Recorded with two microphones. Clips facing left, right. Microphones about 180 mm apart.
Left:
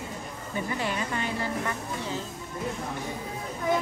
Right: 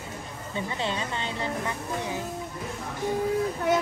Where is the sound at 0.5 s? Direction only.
25° right (ahead or behind).